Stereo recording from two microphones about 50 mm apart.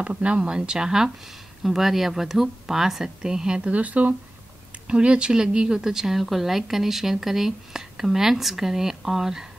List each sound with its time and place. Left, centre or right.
0.0 s speech: right; by 9.5 s centre